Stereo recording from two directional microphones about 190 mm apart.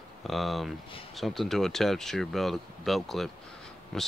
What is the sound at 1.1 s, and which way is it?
Speech, centre (ahead or behind).